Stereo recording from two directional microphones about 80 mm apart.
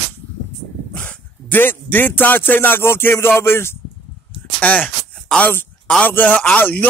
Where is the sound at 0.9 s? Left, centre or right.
Centre.